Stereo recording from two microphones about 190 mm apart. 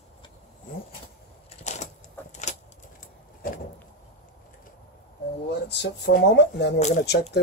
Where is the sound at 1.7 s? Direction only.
40° left (ahead or behind).